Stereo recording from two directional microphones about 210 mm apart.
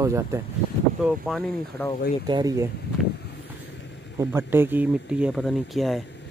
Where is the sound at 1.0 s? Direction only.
Centre (ahead or behind).